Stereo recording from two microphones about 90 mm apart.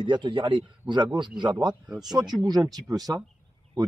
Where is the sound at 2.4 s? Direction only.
45° right (ahead or behind).